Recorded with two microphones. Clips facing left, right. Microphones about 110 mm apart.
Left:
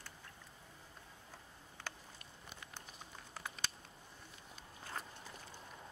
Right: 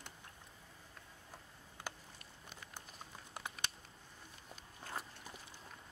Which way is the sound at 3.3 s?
15° right (ahead or behind).